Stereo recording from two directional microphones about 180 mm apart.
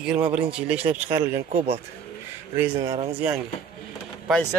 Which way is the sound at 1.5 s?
35° right (ahead or behind).